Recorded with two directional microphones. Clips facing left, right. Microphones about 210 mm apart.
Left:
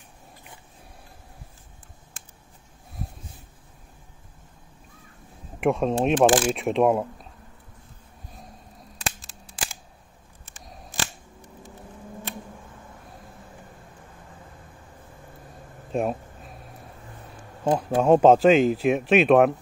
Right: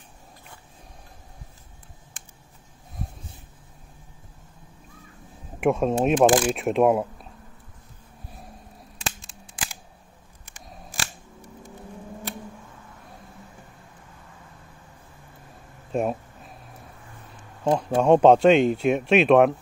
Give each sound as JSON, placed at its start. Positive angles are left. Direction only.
{"t": 5.6, "sound": "speech", "side_deg": 0}
{"t": 15.9, "sound": "a sound", "side_deg": 0}
{"t": 17.6, "sound": "speech", "side_deg": 5}